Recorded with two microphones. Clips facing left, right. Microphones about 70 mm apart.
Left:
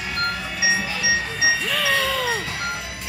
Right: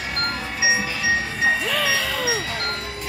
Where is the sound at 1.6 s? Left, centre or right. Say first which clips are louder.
Left 1 dB; centre.